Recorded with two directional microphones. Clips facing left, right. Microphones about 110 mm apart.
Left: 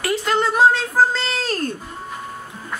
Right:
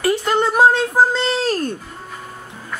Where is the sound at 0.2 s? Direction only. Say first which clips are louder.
Even; 15° right (ahead or behind).